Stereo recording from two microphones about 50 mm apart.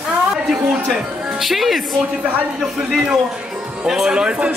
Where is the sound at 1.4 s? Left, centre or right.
Centre.